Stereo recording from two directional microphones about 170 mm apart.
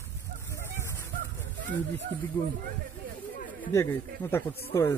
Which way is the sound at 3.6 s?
15° left (ahead or behind).